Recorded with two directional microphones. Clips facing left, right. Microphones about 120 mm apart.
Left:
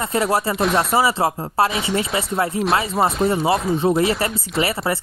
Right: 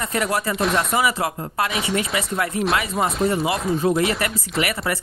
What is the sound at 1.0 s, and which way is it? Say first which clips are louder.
Speech: left 3 dB; 30° left (ahead or behind).